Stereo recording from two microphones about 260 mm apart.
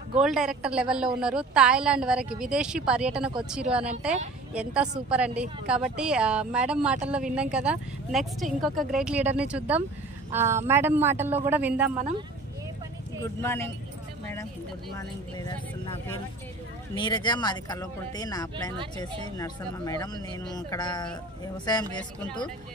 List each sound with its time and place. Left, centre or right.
0.2 s speech: centre
5.1 s a man's voice: centre
13.2 s speech: centre
15.0 s speech: centre
16.9 s speech: centre